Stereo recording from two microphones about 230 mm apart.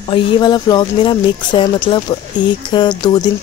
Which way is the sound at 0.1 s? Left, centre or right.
Centre.